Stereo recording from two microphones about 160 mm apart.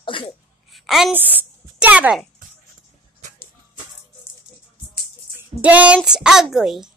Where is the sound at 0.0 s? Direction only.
30° left (ahead or behind).